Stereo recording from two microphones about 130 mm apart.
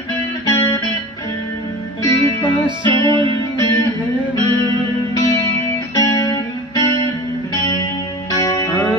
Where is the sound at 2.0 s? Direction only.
35° left (ahead or behind).